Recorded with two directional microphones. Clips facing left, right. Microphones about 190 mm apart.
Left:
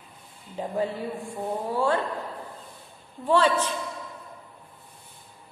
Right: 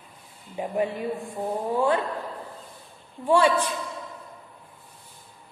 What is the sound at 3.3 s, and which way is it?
Speech, 10° right (ahead or behind).